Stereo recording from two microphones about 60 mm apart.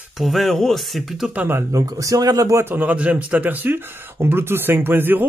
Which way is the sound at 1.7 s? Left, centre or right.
Right.